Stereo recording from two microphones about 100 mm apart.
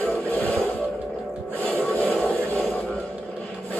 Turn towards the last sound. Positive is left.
turn(degrees=15)  # may be behind; listen again after turning